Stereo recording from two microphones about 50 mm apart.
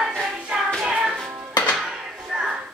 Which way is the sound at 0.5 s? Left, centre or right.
Right.